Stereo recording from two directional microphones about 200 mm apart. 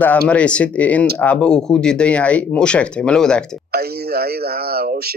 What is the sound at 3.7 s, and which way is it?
Speech, 50° right (ahead or behind).